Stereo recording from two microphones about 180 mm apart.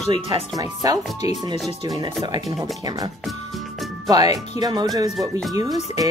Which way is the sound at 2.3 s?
20° right (ahead or behind).